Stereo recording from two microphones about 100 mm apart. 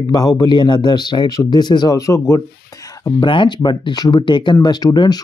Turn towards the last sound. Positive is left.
turn(degrees=45)  # may be behind; listen again after turning